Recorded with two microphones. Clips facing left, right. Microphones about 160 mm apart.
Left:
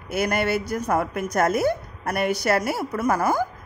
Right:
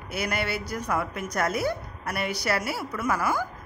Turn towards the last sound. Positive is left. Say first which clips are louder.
# left 5 dB
turn(degrees=45)  # may be behind; listen again after turning